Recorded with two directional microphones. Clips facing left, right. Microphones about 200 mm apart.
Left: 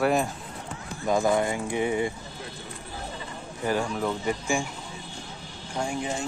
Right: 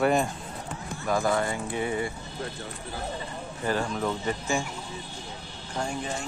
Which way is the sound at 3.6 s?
10° left (ahead or behind).